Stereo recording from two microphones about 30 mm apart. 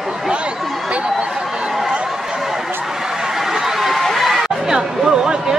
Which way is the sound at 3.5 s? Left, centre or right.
Centre.